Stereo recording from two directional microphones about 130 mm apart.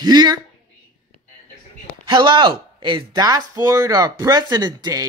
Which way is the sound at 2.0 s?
40° right (ahead or behind).